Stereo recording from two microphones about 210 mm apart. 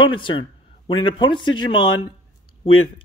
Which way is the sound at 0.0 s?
25° left (ahead or behind).